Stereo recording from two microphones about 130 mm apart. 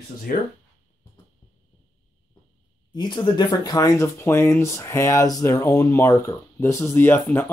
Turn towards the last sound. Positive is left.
turn(degrees=15)  # may be behind; listen again after turning